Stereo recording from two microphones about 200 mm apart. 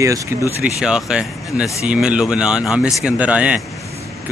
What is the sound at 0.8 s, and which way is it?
Speech, 5° right (ahead or behind).